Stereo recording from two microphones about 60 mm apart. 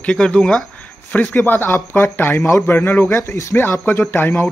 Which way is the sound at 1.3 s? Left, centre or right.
Left.